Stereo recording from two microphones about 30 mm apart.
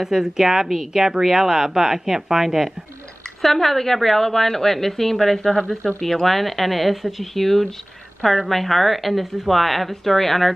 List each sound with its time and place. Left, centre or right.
0.0 s a woman's voice: centre
3.4 s a woman's voice: centre
6.0 s a woman's voice: centre